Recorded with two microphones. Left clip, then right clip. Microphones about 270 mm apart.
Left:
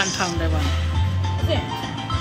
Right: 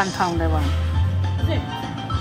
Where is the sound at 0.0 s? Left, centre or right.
Centre.